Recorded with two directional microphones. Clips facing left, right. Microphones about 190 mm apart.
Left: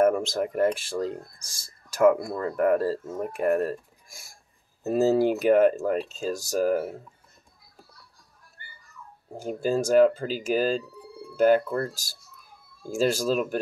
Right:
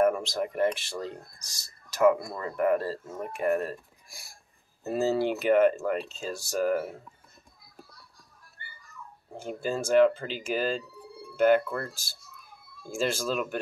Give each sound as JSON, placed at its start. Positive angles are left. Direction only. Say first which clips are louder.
{"t": 0.0, "sound": "speech", "louder": "left 3 dB", "side_deg": 45}
{"t": 9.3, "sound": "speech", "louder": "left 5 dB", "side_deg": 40}